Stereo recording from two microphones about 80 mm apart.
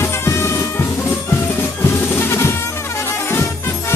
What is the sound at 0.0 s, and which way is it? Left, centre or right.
Music, left.